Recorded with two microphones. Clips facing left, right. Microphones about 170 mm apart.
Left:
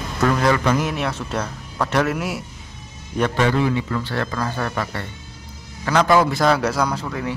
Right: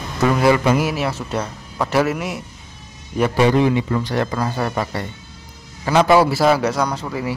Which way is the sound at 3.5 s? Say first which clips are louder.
Right 4 dB; 20° right (ahead or behind).